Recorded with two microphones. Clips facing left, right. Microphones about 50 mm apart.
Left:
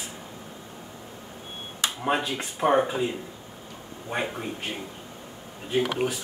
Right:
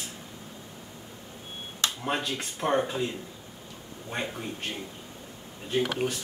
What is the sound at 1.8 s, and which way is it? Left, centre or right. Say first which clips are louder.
Speech: left 4 dB; centre.